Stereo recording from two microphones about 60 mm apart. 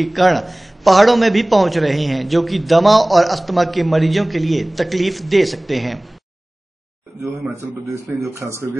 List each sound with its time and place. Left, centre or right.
0.0 s a man's voice: centre
7.2 s a man's voice: right